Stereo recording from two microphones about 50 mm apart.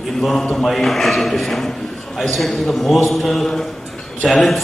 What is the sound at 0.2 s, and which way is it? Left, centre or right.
A man's voice, centre.